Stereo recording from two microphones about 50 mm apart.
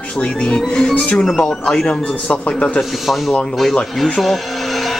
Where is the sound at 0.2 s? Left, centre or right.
Left.